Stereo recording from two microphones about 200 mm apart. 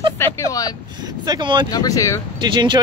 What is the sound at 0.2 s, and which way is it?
Vehicle, 15° left (ahead or behind).